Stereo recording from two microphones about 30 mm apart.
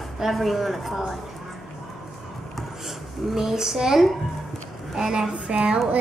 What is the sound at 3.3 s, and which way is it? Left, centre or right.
Speech, centre.